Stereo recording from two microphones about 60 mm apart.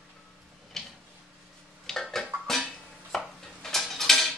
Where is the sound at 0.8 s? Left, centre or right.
Centre.